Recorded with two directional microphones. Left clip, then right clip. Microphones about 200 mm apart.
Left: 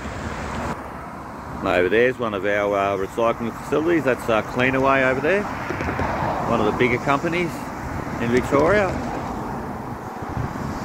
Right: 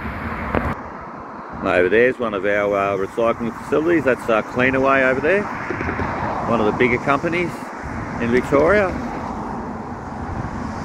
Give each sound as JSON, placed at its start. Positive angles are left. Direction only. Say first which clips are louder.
{"t": 1.6, "sound": "speech", "louder": "right 3 dB", "side_deg": 15}
{"t": 5.7, "sound": "a sound", "louder": "right 2 dB", "side_deg": 70}
{"t": 6.5, "sound": "speech", "louder": "right 3 dB", "side_deg": 10}